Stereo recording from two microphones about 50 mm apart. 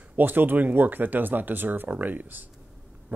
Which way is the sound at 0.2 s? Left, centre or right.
Right.